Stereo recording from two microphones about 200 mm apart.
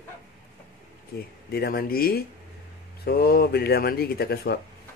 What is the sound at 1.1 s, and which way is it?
Speech, 50° left (ahead or behind).